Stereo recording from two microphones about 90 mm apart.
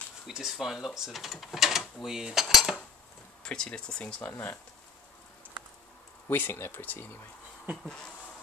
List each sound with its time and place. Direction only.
0.3 s speech: 5° right (ahead or behind)
2.4 s cutlery: centre (ahead or behind)
3.4 s speech: 10° left (ahead or behind)
6.2 s speech: 25° left (ahead or behind)
7.7 s speech: 5° left (ahead or behind)